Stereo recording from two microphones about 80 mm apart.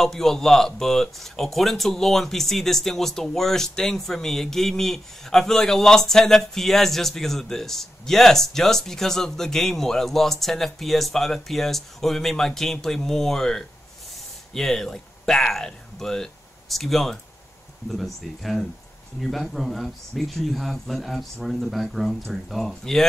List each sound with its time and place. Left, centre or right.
0.0 s speech: centre